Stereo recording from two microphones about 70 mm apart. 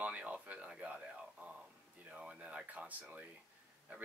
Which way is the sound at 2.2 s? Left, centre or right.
Centre.